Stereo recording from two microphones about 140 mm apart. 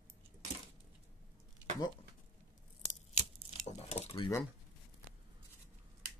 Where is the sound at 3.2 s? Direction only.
50° left (ahead or behind).